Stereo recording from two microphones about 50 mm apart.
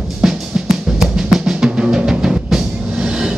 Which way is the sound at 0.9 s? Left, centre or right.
Centre.